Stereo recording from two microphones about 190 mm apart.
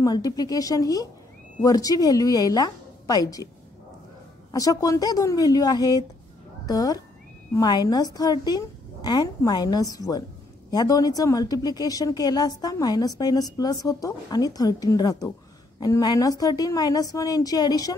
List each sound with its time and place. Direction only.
0.0 s a woman's voice: 20° left (ahead or behind)
4.5 s a woman's voice: 20° left (ahead or behind)